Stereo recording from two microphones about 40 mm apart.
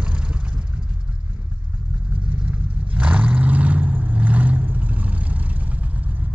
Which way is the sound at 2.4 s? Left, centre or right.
Right.